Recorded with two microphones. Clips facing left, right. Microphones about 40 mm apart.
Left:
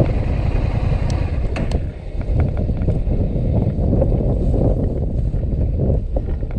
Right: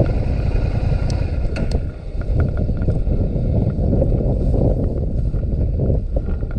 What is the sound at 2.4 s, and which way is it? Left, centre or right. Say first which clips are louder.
Boat: even; left.